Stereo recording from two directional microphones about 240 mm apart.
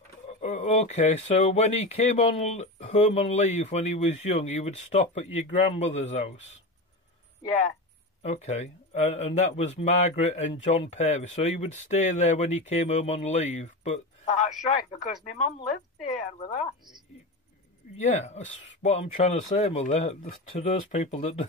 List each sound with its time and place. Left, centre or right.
0.4 s speech: left
8.2 s speech: left
17.9 s speech: left